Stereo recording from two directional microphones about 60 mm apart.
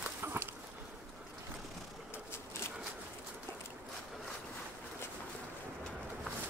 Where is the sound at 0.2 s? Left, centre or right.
Right.